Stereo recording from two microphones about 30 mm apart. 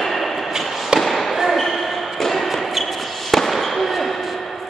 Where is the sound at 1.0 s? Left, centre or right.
Centre.